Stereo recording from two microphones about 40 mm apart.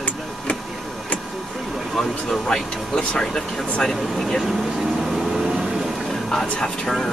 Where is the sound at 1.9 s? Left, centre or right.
Centre.